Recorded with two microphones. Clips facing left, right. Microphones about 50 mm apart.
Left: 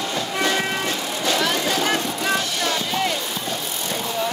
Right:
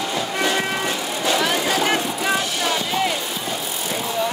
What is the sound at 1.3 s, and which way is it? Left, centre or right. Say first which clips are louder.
Vehicle: right 1 dB; centre.